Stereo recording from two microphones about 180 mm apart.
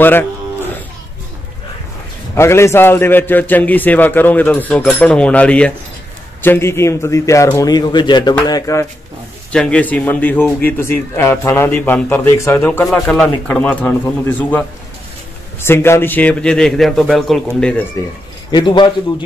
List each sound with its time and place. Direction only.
0.0 s a man's voice: 10° left (ahead or behind)
2.3 s a man's voice: 15° left (ahead or behind)
9.5 s a man's voice: 5° left (ahead or behind)
15.6 s a man's voice: 15° left (ahead or behind)
18.5 s a man's voice: 25° left (ahead or behind)